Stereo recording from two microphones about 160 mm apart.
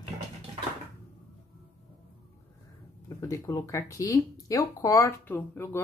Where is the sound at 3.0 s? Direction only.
20° left (ahead or behind).